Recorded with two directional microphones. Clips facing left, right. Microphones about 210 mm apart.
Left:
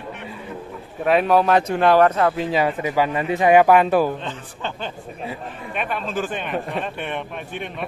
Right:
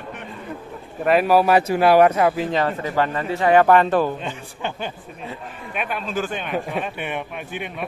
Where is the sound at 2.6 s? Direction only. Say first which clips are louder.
Left 3 dB; 10° left (ahead or behind).